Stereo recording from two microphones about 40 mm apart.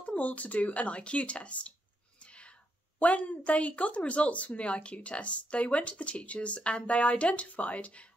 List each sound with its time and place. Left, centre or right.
0.0 s a woman's voice: left
3.0 s a woman's voice: left